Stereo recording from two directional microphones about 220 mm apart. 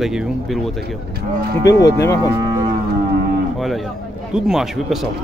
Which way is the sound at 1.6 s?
15° left (ahead or behind).